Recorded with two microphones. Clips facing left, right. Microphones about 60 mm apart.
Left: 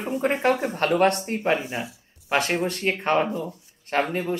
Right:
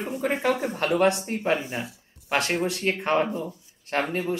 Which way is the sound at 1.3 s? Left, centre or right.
Centre.